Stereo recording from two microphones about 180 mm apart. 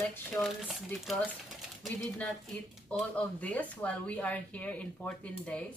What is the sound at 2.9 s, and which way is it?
Speech, 5° left (ahead or behind).